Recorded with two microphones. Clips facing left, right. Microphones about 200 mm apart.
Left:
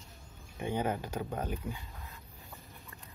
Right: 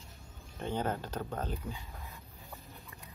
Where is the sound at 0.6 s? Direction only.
10° left (ahead or behind).